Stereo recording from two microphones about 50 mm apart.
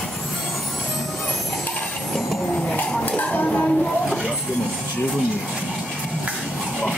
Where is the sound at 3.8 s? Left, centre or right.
Centre.